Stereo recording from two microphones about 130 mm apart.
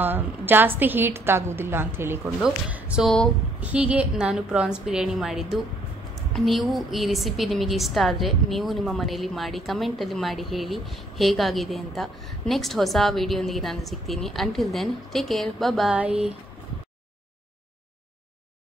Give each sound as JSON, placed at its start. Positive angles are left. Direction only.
{"t": 0.0, "sound": "a woman's voice", "side_deg": -15}
{"t": 2.2, "sound": "a woman's voice", "side_deg": -5}